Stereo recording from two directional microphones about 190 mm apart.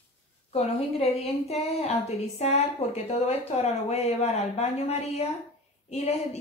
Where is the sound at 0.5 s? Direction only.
35° left (ahead or behind).